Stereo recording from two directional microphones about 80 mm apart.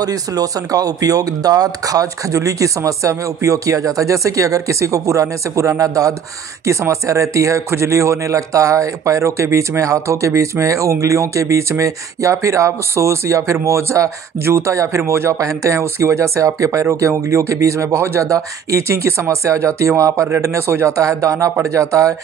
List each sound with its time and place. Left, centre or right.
0.0 s speech: right